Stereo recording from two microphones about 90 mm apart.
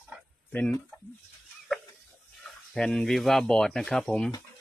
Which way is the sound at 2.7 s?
5° left (ahead or behind).